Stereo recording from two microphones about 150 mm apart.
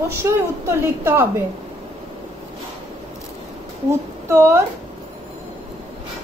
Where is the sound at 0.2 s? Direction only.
15° right (ahead or behind).